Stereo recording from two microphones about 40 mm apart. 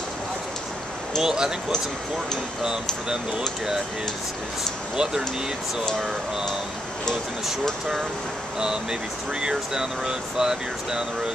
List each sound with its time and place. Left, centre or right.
1.2 s speech: centre
2.6 s speech: centre
4.9 s speech: centre
9.4 s speech: centre